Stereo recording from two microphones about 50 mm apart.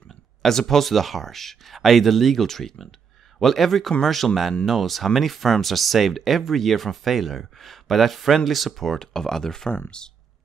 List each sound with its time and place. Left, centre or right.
0.4 s speech: centre